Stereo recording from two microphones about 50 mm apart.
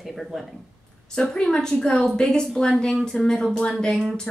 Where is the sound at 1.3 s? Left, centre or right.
Centre.